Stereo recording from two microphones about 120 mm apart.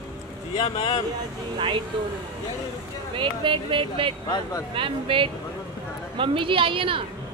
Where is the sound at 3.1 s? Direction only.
45° right (ahead or behind).